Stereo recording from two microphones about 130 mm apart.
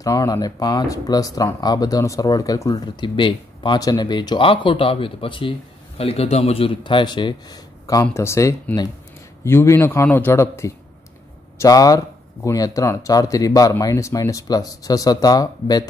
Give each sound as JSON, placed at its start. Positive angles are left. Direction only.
{"t": 0.0, "sound": "a man's voice", "side_deg": 25}
{"t": 7.8, "sound": "speech", "side_deg": 25}